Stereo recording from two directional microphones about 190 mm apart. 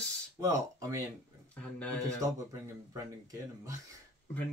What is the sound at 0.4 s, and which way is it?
Speech, 15° right (ahead or behind).